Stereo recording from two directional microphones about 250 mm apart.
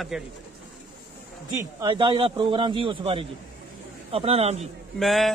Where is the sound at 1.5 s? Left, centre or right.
Centre.